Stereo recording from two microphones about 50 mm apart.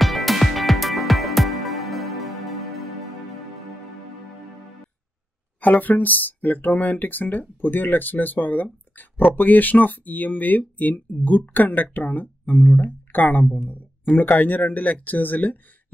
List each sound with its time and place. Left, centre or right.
0.0 s music: centre
5.6 s speech: left